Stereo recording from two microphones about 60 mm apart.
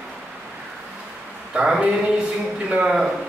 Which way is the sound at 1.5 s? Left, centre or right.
Centre.